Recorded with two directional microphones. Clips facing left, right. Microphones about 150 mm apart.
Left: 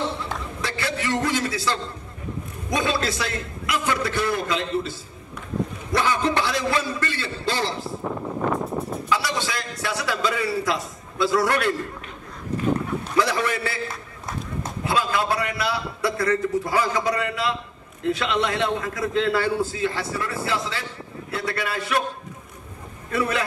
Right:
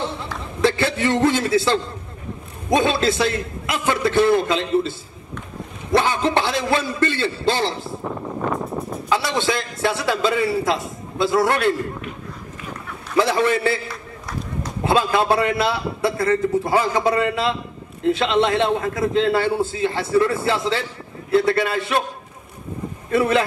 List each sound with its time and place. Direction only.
0.6 s a man's voice: 25° right (ahead or behind)
9.4 s a man's voice: 25° right (ahead or behind)
13.1 s a man's voice: 25° right (ahead or behind)
14.9 s a man's voice: 25° right (ahead or behind)
23.1 s a man's voice: 25° right (ahead or behind)